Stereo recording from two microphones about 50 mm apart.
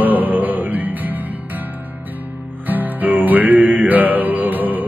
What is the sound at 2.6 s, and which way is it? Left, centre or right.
Music, right.